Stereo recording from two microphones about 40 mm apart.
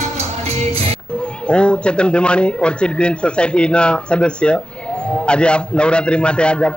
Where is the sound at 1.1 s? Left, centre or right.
Left.